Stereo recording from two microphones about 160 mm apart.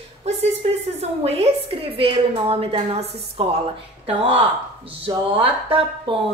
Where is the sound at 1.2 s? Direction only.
40° right (ahead or behind).